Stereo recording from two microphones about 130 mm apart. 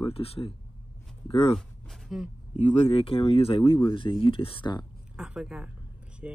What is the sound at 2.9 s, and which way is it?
Speech, 45° left (ahead or behind).